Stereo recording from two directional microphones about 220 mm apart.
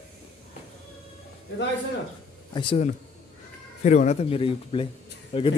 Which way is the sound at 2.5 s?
25° left (ahead or behind).